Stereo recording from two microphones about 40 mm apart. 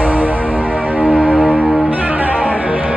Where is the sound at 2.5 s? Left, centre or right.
Centre.